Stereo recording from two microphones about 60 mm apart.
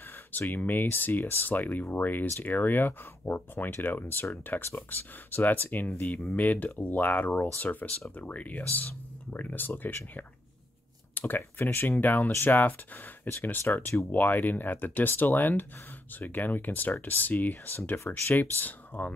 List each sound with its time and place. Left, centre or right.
0.5 s speech: left
11.1 s speech: left
17.7 s speech: left